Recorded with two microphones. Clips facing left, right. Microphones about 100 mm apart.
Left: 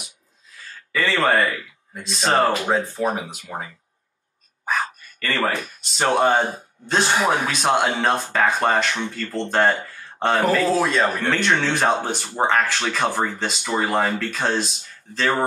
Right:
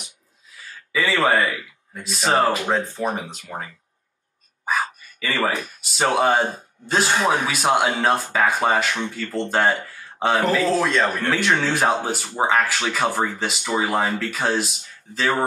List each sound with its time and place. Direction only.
0.9 s a man's voice: 5° right (ahead or behind)
4.6 s a man's voice: 5° right (ahead or behind)
7.4 s a man's voice: 5° right (ahead or behind)